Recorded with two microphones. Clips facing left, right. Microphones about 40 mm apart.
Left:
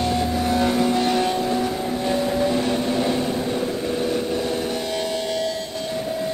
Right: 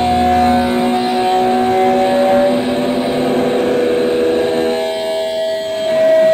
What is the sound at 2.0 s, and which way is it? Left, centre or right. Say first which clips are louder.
Vehicle: right 10 dB; right.